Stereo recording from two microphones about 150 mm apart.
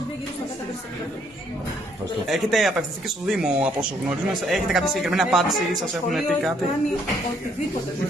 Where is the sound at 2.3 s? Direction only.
Centre (ahead or behind).